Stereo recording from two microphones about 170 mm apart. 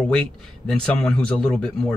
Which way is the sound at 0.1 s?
5° left (ahead or behind).